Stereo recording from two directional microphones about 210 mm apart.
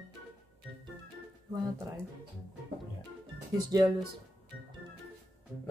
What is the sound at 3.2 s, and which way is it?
Speech, 20° right (ahead or behind).